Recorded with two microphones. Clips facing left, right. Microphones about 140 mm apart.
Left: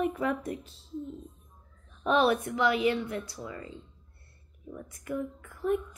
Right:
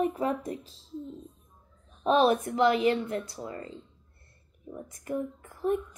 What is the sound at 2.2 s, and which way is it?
Speech, 40° right (ahead or behind).